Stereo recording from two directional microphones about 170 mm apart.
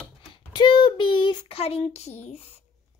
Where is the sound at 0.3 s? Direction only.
30° left (ahead or behind).